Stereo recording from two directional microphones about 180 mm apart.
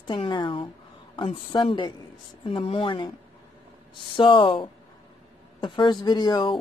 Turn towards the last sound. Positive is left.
turn(degrees=25)  # may be behind; listen again after turning